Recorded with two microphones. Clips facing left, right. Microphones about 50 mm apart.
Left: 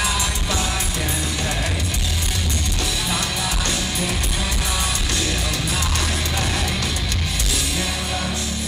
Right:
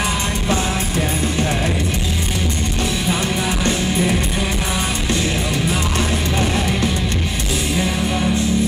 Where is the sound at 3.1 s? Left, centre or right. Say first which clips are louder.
Right 4 dB; right.